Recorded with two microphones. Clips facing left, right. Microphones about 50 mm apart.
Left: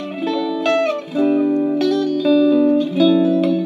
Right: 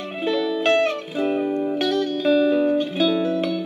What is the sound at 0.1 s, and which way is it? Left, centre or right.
Music, right.